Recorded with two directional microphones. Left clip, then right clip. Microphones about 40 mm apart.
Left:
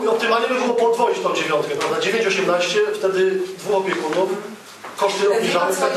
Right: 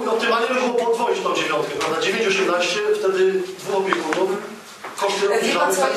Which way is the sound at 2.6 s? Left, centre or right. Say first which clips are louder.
Left 1 dB; left.